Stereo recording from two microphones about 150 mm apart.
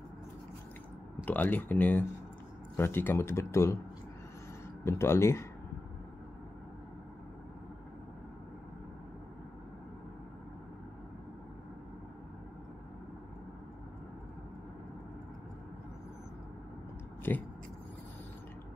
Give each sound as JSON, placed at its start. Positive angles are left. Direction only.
{"t": 1.2, "sound": "speech", "side_deg": 10}
{"t": 4.8, "sound": "speech", "side_deg": 20}
{"t": 17.3, "sound": "speech", "side_deg": 15}